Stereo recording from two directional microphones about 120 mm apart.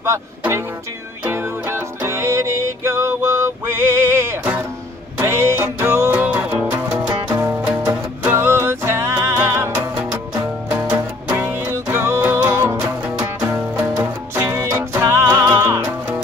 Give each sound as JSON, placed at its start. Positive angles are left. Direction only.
{"t": 0.0, "sound": "speech", "side_deg": -20}
{"t": 1.2, "sound": "music", "side_deg": -20}
{"t": 10.7, "sound": "music", "side_deg": -10}
{"t": 14.3, "sound": "music", "side_deg": -20}